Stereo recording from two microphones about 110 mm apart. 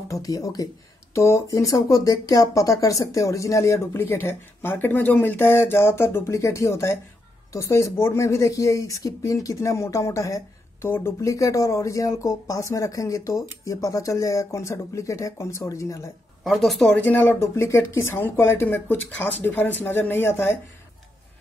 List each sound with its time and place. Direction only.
0.1 s speech: 35° left (ahead or behind)
16.4 s speech: centre (ahead or behind)
17.1 s speech: 20° left (ahead or behind)